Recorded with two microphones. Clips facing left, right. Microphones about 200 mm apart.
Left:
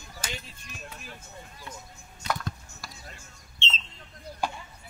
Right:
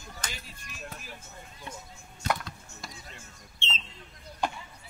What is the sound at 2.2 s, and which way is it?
Chop, 50° right (ahead or behind).